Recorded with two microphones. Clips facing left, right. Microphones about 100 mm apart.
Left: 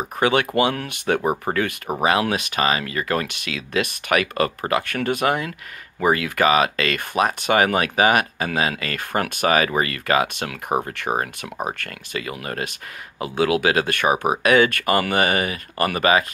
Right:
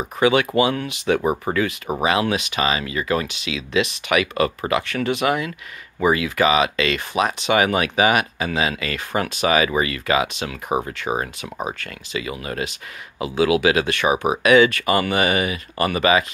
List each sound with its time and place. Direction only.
0.2 s speech: 45° left (ahead or behind)
6.0 s speech: 50° left (ahead or behind)